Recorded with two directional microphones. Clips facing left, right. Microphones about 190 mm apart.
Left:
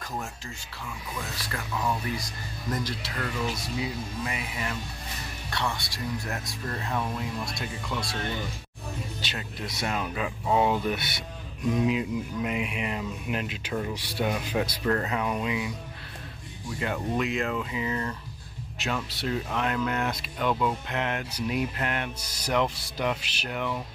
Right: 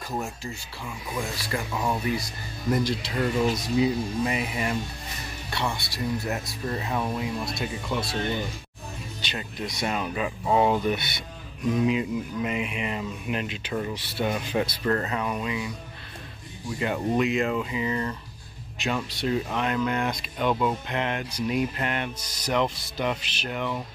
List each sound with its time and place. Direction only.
1.4 s speech: 10° right (ahead or behind)
1.7 s speech: 25° right (ahead or behind)
2.1 s speech: 10° right (ahead or behind)
5.5 s speech: 10° right (ahead or behind)
8.0 s speech: 25° right (ahead or behind)
9.2 s speech: 5° left (ahead or behind)
17.2 s speech: centre (ahead or behind)